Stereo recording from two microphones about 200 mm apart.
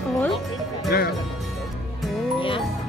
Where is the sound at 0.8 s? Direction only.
50° left (ahead or behind).